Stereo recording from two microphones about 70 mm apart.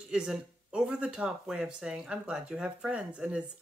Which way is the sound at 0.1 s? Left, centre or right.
Centre.